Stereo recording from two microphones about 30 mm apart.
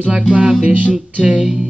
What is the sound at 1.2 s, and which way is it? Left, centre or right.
Music, right.